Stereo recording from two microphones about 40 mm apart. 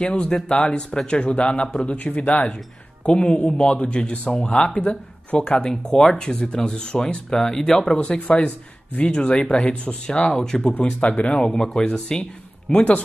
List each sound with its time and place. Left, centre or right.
0.0 s speech: left
3.1 s speech: left
10.8 s speech: left
11.5 s a man's voice: centre
12.7 s speech: left